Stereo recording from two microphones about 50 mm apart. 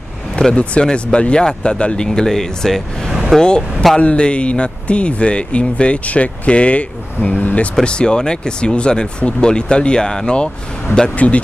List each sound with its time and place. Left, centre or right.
0.4 s speech: centre
2.0 s speech: centre; by 11.4 s left